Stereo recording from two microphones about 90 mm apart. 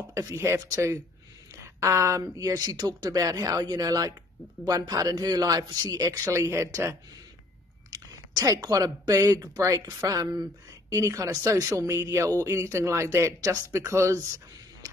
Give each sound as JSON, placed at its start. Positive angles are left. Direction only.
{"t": 0.1, "sound": "a woman's voice", "side_deg": -35}
{"t": 7.9, "sound": "speech", "side_deg": -45}